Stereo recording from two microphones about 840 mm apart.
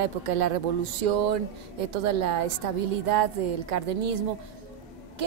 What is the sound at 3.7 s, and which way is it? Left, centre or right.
Speech, right.